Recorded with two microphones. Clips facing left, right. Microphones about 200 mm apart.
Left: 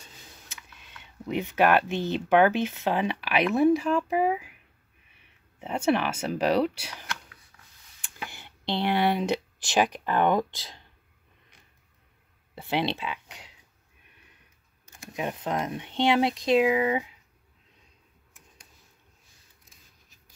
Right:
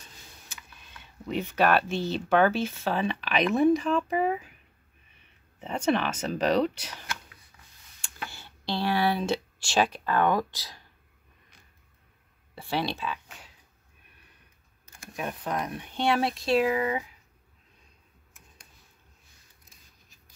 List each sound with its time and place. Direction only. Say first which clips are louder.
1.0 s speech: left 1 dB; 15° left (ahead or behind)
5.6 s speech: left 1 dB; 10° left (ahead or behind)
7.5 s a sound: right 1 dB; 5° right (ahead or behind)
8.0 s speech: even; 15° left (ahead or behind)
12.5 s speech: left 2 dB; 20° left (ahead or behind)
14.9 s speech: left 3 dB; 20° left (ahead or behind)